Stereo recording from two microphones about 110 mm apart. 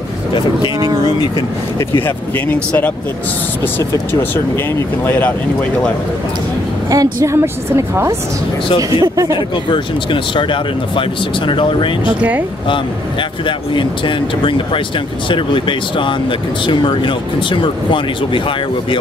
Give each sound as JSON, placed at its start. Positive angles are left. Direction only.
{"t": 2.0, "sound": "speech", "side_deg": 15}
{"t": 6.9, "sound": "a woman's voice", "side_deg": -30}
{"t": 8.6, "sound": "speech", "side_deg": 50}
{"t": 9.0, "sound": "speech", "side_deg": -30}
{"t": 9.7, "sound": "speech", "side_deg": 50}
{"t": 12.2, "sound": "speech", "side_deg": -15}
{"t": 13.5, "sound": "speech", "side_deg": 50}